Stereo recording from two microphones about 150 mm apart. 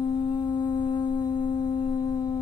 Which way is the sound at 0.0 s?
30° left (ahead or behind).